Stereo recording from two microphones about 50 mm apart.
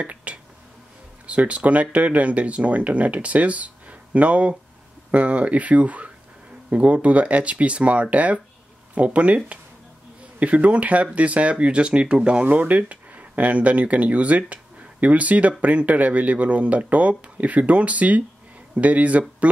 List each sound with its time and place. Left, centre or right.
0.0 s a sound: right
1.2 s speech: right
12.4 s speech: right